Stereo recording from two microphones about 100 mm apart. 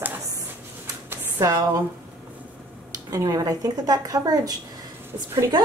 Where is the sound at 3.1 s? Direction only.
35° right (ahead or behind).